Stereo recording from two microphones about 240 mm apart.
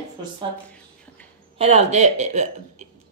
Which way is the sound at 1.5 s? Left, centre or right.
Right.